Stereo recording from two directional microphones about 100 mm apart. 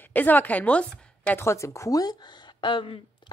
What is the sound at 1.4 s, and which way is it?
A woman's voice, 30° left (ahead or behind).